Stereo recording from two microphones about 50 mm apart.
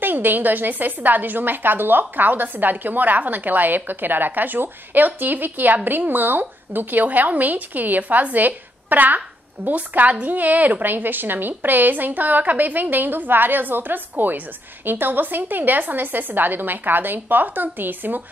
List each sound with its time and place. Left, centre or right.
0.0 s a woman's voice: right